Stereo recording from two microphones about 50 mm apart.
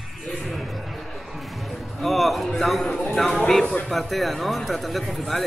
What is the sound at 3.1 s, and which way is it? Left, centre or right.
A man's voice, centre.